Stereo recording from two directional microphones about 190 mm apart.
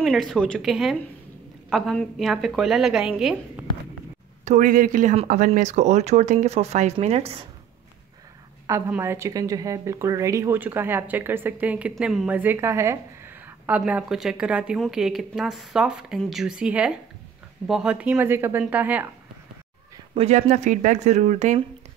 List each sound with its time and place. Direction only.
0.0 s a woman's voice: centre (ahead or behind)
4.5 s speech: 45° right (ahead or behind)
8.6 s a woman's voice: 15° right (ahead or behind)
20.2 s speech: 35° right (ahead or behind)